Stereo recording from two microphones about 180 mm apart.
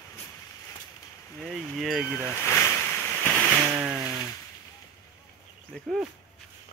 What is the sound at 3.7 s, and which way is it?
Chainsaw, 10° right (ahead or behind).